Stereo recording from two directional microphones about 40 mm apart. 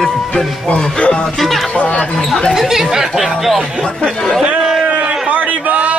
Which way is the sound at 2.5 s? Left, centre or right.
Centre.